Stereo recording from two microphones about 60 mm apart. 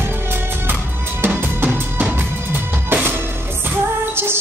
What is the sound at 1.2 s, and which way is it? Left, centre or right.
Music, right.